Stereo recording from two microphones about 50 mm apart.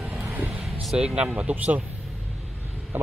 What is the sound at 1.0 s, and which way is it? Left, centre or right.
Speech, centre.